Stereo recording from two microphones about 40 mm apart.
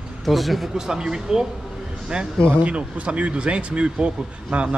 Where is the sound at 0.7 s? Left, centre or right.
Centre.